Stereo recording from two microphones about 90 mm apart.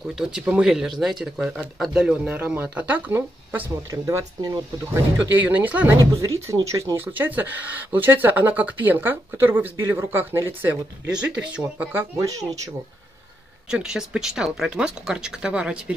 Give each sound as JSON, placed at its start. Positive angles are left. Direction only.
{"t": 0.0, "sound": "speech", "side_deg": -5}
{"t": 3.9, "sound": "speech", "side_deg": -35}
{"t": 5.3, "sound": "speech", "side_deg": -20}
{"t": 6.1, "sound": "speech", "side_deg": -35}
{"t": 7.0, "sound": "speech", "side_deg": -20}
{"t": 11.1, "sound": "speech", "side_deg": -10}
{"t": 12.2, "sound": "speech", "side_deg": -40}
{"t": 13.7, "sound": "speech", "side_deg": -5}